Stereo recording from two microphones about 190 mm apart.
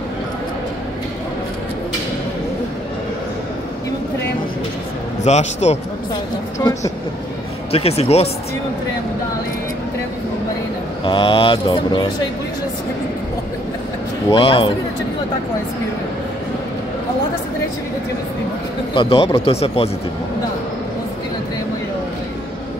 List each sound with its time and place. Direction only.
5.2 s speech: 35° left (ahead or behind)
6.6 s speech: 15° left (ahead or behind)
7.7 s speech: 35° left (ahead or behind)
11.1 s speech: 25° left (ahead or behind)
14.3 s speech: 30° left (ahead or behind)
18.9 s speech: 30° left (ahead or behind)